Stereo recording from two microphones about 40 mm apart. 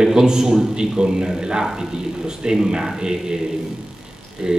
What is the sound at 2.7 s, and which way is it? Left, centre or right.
Speech, centre.